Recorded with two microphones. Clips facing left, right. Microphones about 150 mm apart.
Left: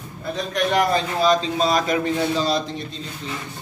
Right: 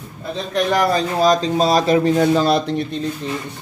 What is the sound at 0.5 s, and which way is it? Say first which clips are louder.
A man's voice: right 3 dB; 35° right (ahead or behind).